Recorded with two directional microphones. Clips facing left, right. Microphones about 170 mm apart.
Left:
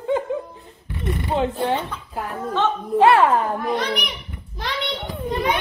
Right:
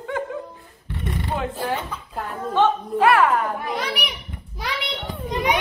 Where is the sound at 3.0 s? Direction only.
25° left (ahead or behind).